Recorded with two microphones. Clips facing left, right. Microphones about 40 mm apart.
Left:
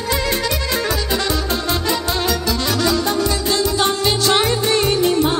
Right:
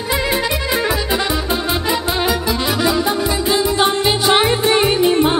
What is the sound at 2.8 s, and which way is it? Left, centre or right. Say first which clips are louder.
Music: even; centre.